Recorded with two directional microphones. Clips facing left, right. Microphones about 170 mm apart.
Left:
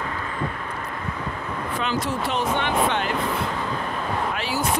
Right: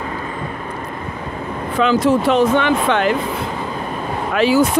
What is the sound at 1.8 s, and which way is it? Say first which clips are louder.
Speech: right 13 dB; 90° right.